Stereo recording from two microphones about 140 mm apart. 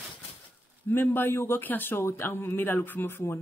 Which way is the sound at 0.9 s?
15° left (ahead or behind).